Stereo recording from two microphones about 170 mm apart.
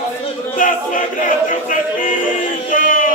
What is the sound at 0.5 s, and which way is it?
Choir, 50° left (ahead or behind).